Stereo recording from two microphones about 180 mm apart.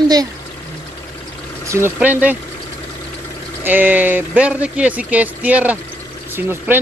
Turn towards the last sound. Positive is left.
turn(degrees=-10)  # may be behind; listen again after turning